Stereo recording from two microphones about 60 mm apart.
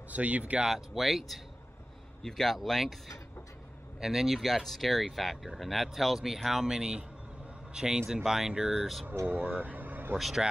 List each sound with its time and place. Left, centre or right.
0.1 s speech: right
0.7 s speech: centre
8.7 s speech: centre
9.2 s speech: right
10.1 s speech: centre